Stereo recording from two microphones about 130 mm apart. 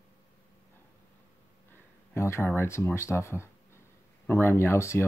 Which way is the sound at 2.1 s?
20° left (ahead or behind).